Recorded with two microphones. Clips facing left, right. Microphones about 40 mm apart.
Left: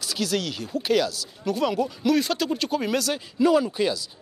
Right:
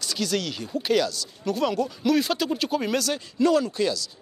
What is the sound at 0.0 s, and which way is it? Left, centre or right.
Speech, centre.